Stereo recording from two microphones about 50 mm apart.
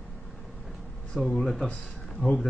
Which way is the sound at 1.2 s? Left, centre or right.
Centre.